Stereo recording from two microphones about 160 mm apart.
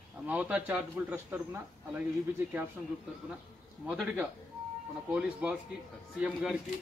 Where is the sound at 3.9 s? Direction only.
5° right (ahead or behind).